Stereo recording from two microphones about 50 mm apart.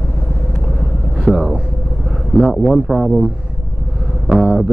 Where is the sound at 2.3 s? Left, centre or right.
Right.